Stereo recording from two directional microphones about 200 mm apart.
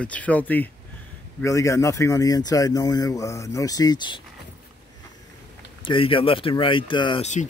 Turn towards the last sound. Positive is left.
turn(degrees=25)  # may be behind; listen again after turning